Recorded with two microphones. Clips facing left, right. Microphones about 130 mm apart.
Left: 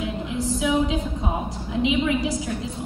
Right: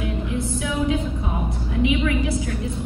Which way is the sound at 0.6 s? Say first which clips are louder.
Left 3 dB; 20° left (ahead or behind).